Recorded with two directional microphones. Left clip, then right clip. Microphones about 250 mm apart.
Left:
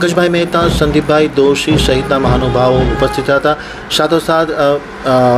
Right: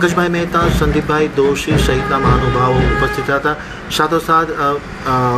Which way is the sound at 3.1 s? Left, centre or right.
Centre.